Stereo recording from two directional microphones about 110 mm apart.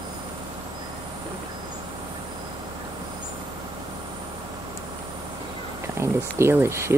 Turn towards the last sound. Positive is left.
turn(degrees=-25)  # may be behind; listen again after turning